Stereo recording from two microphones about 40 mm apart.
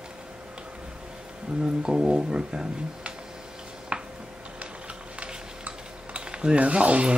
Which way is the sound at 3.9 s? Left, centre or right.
Right.